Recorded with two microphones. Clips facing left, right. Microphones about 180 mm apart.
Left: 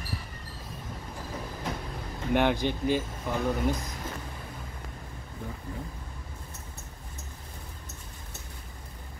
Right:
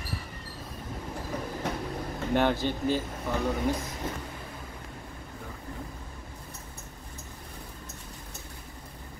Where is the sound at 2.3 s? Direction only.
15° left (ahead or behind).